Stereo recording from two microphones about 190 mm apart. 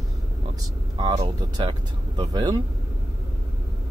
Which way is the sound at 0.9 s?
20° right (ahead or behind).